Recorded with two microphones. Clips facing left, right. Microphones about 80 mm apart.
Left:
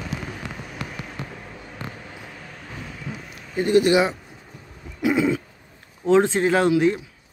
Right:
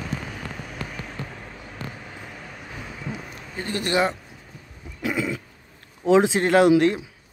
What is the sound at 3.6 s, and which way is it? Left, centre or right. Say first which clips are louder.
Speech: left 7 dB; centre.